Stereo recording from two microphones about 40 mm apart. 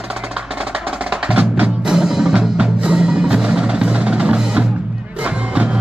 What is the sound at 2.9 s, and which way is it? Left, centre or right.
Percussion, centre.